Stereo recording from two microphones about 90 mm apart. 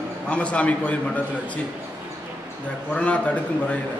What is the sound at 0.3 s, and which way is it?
Speech, 15° left (ahead or behind).